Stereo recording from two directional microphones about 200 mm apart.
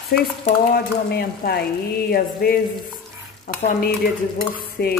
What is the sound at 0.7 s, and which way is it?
Speech, 50° left (ahead or behind).